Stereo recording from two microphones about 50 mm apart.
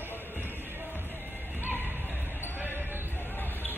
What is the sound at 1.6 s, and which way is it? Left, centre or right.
Music, left.